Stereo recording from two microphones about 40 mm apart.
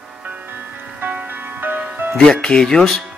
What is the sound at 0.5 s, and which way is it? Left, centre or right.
Music, right.